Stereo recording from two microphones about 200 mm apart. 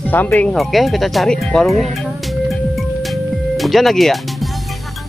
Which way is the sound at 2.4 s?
Centre (ahead or behind).